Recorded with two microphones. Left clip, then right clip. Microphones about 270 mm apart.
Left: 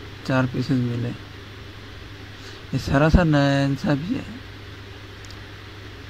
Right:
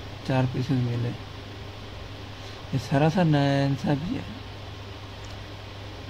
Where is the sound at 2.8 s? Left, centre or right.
Centre.